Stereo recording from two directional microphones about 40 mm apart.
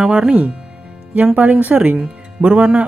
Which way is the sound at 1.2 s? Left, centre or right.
Right.